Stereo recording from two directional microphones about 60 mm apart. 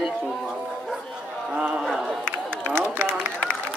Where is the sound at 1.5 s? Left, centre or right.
Centre.